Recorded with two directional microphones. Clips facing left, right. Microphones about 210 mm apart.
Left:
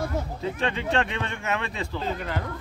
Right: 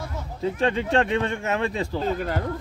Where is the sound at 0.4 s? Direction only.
40° right (ahead or behind).